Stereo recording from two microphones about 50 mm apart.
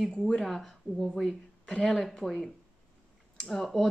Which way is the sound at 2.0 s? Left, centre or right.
Centre.